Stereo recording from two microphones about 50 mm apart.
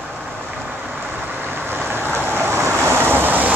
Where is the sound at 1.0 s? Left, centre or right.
Right.